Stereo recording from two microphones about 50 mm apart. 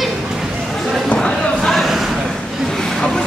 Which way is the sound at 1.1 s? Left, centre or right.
Centre.